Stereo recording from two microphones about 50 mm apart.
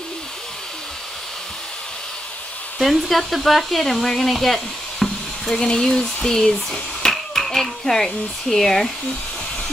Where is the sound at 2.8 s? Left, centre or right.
Centre.